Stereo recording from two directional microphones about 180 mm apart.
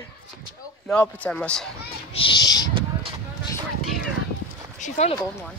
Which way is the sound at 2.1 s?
25° left (ahead or behind).